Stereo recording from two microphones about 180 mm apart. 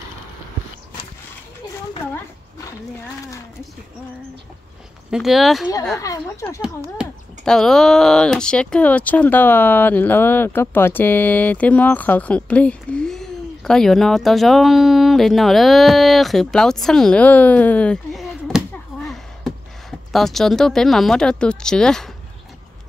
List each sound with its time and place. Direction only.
5.1 s speech: centre (ahead or behind)
5.9 s speech: 15° left (ahead or behind)
7.0 s speech: 5° left (ahead or behind)
18.9 s a sound: 5° right (ahead or behind)
20.1 s speech: centre (ahead or behind)